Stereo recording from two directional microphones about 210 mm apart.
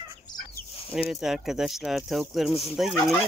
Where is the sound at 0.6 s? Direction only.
45° left (ahead or behind).